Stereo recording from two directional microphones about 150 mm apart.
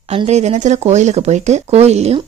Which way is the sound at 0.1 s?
45° right (ahead or behind).